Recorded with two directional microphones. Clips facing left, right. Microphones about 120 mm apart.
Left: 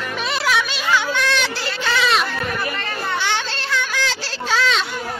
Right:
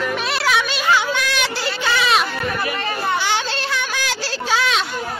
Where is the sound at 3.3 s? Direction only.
15° right (ahead or behind).